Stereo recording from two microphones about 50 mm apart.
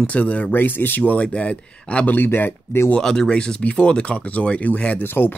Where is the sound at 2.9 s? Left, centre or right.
Centre.